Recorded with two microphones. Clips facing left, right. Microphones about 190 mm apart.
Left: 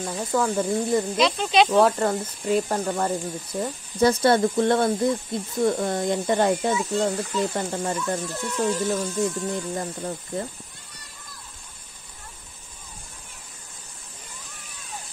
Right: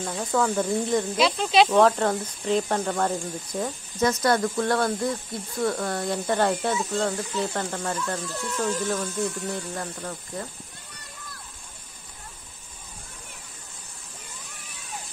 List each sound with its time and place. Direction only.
0.2 s speech: 5° left (ahead or behind)
4.0 s speech: 30° left (ahead or behind)